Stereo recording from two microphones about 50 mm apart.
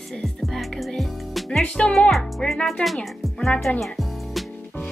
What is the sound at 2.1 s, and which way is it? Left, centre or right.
Speech, centre.